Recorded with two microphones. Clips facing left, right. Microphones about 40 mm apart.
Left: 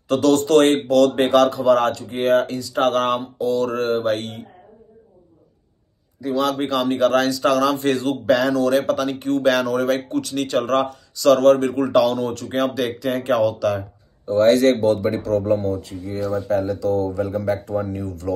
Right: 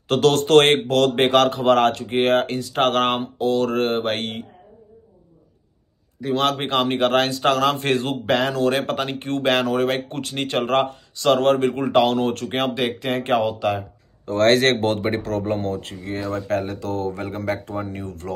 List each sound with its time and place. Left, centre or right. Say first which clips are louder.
0.1 s speech: even; right
6.5 s speech: left 1 dB; right
14.2 s speech: left 2 dB; right